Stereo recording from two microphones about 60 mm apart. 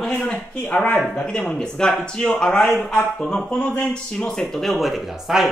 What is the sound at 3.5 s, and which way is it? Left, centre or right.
Speech, left.